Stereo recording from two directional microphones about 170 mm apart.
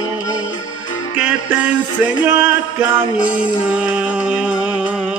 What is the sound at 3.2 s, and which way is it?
Music, 50° left (ahead or behind).